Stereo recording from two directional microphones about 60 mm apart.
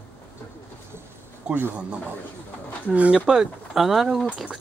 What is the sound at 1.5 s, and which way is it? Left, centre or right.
Speech, centre.